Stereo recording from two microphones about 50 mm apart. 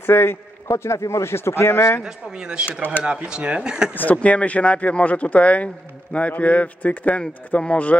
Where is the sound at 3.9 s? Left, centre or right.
Left.